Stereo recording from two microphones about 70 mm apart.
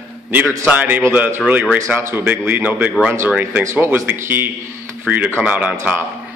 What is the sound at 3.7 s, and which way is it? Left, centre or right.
Speech, right.